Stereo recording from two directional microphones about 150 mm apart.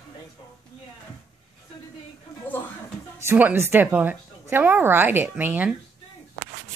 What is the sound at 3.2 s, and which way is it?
A woman's voice, 15° right (ahead or behind).